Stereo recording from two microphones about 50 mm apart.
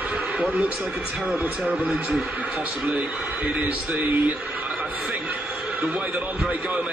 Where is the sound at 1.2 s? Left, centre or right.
Right.